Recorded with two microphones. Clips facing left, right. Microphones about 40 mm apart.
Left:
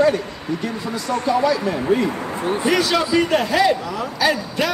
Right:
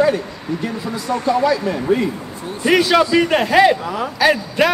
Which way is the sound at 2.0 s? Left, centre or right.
Left.